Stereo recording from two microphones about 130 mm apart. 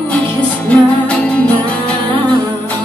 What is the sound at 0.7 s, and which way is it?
Music, 10° left (ahead or behind).